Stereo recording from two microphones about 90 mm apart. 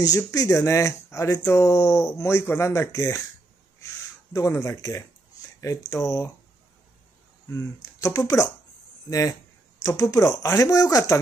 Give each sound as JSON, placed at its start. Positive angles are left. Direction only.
{"t": 0.0, "sound": "speech", "side_deg": 40}
{"t": 4.5, "sound": "speech", "side_deg": 35}
{"t": 7.5, "sound": "speech", "side_deg": 40}